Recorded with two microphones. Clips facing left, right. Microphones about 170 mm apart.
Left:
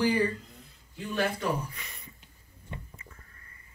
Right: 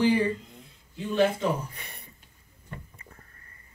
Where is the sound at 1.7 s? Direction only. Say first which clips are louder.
Right 1 dB; 60° right (ahead or behind).